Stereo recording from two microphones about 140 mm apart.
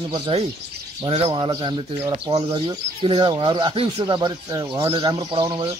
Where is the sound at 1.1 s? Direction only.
40° right (ahead or behind).